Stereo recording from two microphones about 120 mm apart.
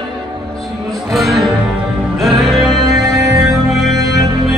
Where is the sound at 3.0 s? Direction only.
30° right (ahead or behind).